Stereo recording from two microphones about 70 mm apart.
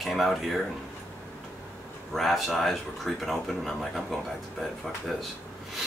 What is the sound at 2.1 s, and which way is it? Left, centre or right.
Speech, centre.